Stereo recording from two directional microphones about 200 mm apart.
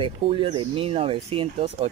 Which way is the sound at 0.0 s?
25° right (ahead or behind).